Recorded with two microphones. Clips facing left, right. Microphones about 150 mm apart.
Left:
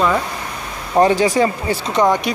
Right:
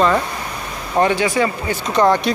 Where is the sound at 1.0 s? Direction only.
40° left (ahead or behind).